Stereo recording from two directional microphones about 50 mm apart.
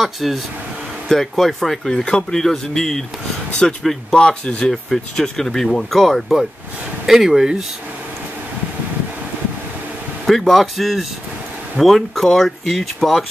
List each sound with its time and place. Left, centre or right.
0.0 s speech: centre
4.8 s speech: centre
7.1 s speech: centre
10.4 s speech: centre